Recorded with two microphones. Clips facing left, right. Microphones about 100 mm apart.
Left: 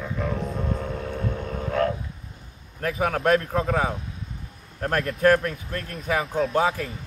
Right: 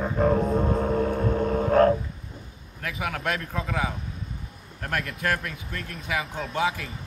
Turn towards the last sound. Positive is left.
turn(degrees=40)  # may be behind; listen again after turning